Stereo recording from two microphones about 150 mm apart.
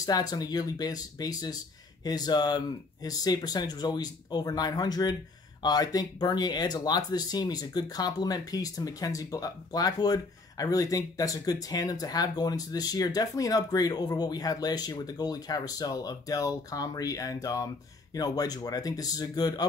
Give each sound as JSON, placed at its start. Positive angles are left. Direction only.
{"t": 0.0, "sound": "speech", "side_deg": 25}